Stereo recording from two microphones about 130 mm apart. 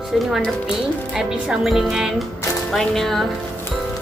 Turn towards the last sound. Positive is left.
turn(degrees=0)  # may be behind; listen again after turning